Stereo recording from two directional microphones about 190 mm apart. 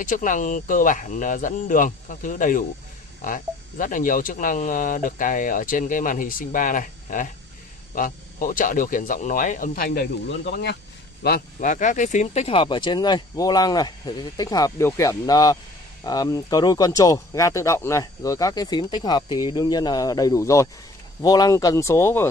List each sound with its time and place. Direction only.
0.0 s speech: 45° left (ahead or behind); by 10.8 s 60° left (ahead or behind)
11.2 s speech: 45° left (ahead or behind); by 22.3 s 15° left (ahead or behind)